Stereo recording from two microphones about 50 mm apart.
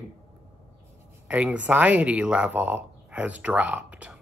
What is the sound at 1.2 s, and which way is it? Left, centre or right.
Speech, right.